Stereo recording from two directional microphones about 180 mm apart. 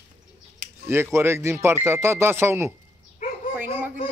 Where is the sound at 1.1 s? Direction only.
15° right (ahead or behind).